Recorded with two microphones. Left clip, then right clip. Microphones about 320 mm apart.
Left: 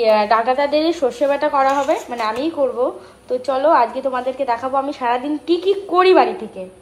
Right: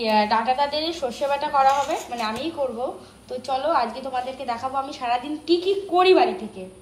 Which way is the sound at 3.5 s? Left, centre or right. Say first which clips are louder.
Left 7 dB; centre.